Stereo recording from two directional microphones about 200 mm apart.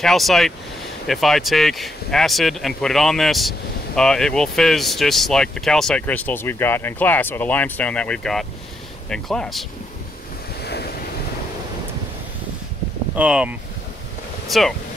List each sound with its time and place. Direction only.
0.0 s speech: centre (ahead or behind)
10.6 s waves: 55° left (ahead or behind)
13.1 s speech: 5° right (ahead or behind)